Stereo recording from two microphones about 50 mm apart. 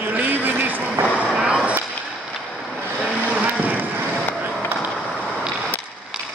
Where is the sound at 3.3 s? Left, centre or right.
Right.